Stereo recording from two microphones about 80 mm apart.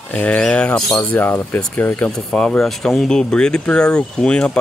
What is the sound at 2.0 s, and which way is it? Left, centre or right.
Speech, centre.